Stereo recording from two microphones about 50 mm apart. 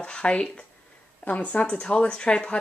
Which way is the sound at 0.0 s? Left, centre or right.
Left.